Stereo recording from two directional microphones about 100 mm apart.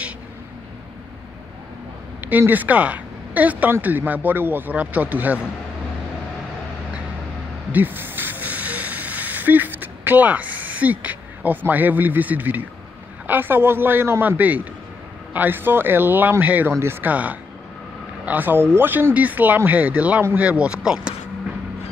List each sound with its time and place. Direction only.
2.2 s speech: 15° right (ahead or behind)
7.7 s snake: 20° right (ahead or behind)
13.3 s a man's voice: 20° right (ahead or behind)